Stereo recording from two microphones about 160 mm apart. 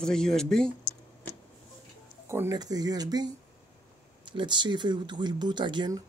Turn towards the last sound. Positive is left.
turn(degrees=-25)  # may be behind; listen again after turning